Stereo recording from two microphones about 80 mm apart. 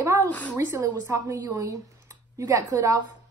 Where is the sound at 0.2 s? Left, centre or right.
Centre.